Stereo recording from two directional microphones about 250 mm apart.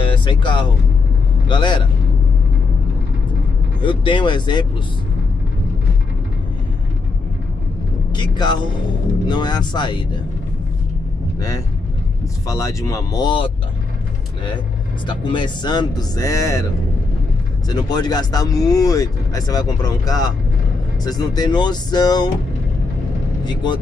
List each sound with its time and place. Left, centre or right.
0.0 s music: centre
1.5 s speech: centre
3.8 s speech: centre
8.1 s speech: centre
11.3 s speech: centre
15.0 s speech: centre
17.6 s speech: centre
23.4 s speech: centre